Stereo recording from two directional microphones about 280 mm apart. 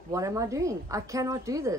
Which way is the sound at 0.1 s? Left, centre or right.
Centre.